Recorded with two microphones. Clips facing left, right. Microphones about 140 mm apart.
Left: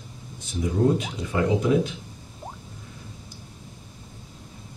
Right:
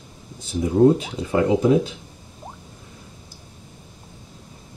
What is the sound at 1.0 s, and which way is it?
Speech, 35° right (ahead or behind).